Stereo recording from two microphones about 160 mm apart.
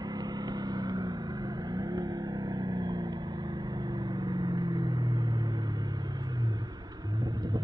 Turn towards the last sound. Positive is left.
turn(degrees=-25)  # may be behind; listen again after turning